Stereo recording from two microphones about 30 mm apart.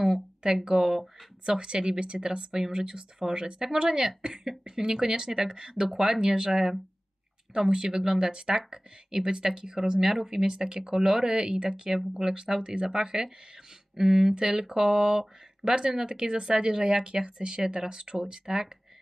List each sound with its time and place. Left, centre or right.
0.7 s speech: centre
1.4 s speech: right
9.9 s speech: centre